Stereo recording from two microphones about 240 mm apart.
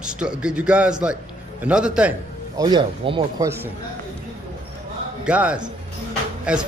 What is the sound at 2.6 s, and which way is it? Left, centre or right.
A man's voice, centre.